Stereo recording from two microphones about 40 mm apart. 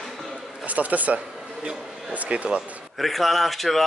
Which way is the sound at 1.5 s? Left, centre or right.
Centre.